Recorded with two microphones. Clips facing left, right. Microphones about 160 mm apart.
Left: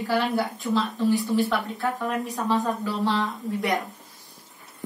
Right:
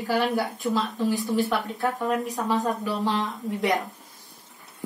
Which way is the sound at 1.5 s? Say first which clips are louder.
Even; 20° right (ahead or behind).